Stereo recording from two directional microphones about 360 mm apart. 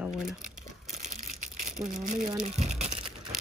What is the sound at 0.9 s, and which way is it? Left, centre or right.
Crushing, centre.